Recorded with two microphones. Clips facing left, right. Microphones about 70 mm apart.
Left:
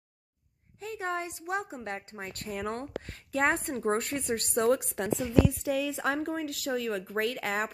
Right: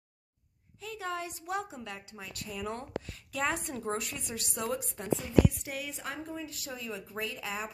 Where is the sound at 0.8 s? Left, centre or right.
Left.